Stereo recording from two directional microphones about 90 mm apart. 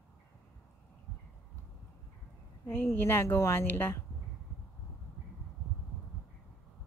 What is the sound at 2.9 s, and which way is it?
Speech, 25° left (ahead or behind).